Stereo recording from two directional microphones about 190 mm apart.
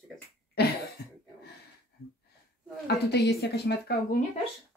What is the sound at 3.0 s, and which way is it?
A woman's voice, 60° left (ahead or behind).